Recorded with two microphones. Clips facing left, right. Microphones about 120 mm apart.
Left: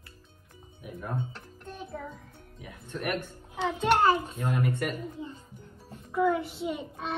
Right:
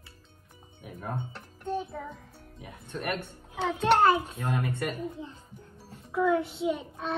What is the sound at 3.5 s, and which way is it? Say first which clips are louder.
Speech: right 1 dB; centre (ahead or behind).